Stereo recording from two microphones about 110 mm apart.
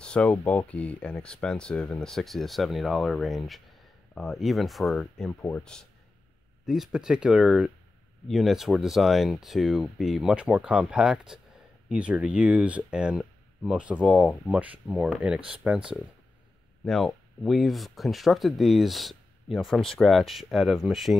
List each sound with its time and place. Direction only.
0.0 s speech: 10° left (ahead or behind)
5.4 s speech: 15° left (ahead or behind)
6.6 s speech: centre (ahead or behind)
16.8 s speech: centre (ahead or behind)